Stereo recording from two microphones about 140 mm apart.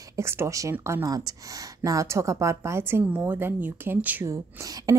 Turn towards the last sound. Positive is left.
turn(degrees=-25)  # may be behind; listen again after turning